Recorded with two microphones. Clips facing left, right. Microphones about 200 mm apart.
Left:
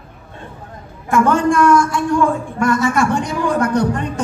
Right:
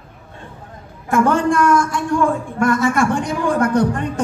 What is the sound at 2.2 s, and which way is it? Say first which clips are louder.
A man's voice: left 1 dB; 50° right (ahead or behind).